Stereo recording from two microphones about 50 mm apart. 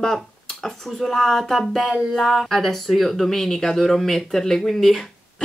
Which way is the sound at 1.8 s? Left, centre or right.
Centre.